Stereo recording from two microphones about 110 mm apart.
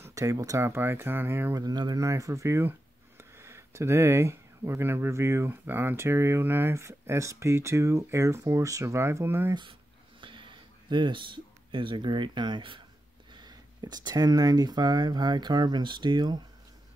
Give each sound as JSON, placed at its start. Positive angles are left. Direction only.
{"t": 0.0, "sound": "speech", "side_deg": -30}
{"t": 1.5, "sound": "speech", "side_deg": -35}
{"t": 9.5, "sound": "speech", "side_deg": -45}